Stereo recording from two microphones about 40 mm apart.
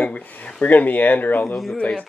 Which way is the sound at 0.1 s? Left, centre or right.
Left.